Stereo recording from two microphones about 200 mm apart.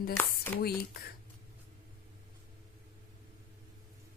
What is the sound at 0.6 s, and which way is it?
Speech, 50° left (ahead or behind).